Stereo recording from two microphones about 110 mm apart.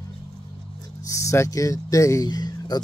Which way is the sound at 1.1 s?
30° left (ahead or behind).